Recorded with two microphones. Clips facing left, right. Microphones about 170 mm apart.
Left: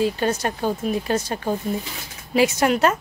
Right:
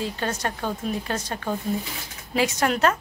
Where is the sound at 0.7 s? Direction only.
10° left (ahead or behind).